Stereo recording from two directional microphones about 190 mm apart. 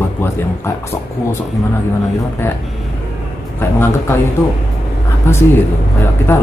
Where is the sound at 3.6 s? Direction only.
10° left (ahead or behind).